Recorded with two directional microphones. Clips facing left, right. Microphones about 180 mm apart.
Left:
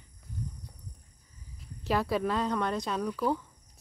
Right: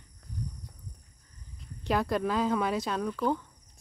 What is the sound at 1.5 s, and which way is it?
Speech, 5° left (ahead or behind).